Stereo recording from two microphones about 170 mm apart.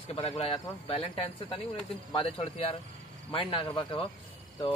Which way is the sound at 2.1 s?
35° left (ahead or behind).